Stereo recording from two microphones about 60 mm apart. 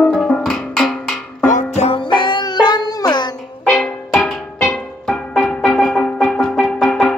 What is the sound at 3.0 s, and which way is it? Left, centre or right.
Music, left.